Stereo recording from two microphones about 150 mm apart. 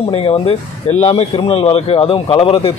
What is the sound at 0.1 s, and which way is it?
A man's voice, 40° left (ahead or behind).